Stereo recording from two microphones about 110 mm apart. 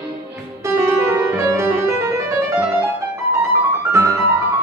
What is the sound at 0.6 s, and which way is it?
Music, 25° right (ahead or behind).